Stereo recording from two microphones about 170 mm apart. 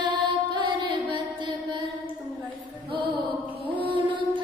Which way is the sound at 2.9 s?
30° right (ahead or behind).